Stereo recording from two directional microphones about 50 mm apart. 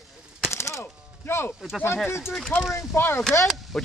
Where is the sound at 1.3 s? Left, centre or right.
Left.